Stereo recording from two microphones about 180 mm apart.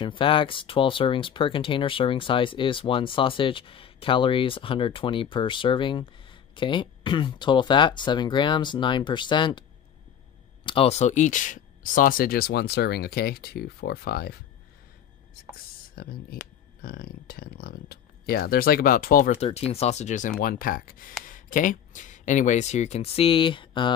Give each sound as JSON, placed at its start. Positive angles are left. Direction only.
{"t": 0.0, "sound": "speech", "side_deg": 30}
{"t": 15.9, "sound": "speech", "side_deg": 60}